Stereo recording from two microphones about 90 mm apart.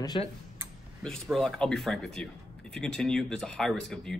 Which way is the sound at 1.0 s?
5° left (ahead or behind).